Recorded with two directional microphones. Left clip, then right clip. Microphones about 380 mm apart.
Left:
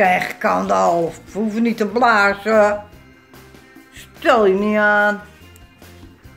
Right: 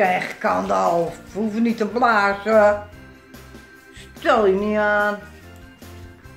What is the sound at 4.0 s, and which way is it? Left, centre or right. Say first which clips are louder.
Speech: left 3 dB; left.